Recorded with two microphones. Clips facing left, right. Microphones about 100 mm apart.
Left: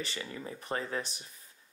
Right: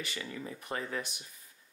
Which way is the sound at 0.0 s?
30° left (ahead or behind).